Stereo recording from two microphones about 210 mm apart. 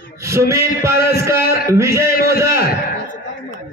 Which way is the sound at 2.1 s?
45° left (ahead or behind).